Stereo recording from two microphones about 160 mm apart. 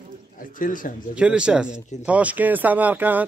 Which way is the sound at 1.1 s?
5° right (ahead or behind).